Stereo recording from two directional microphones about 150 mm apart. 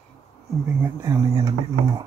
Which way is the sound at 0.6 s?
15° right (ahead or behind).